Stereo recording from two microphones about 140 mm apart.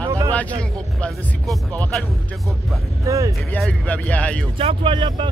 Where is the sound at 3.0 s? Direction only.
25° right (ahead or behind).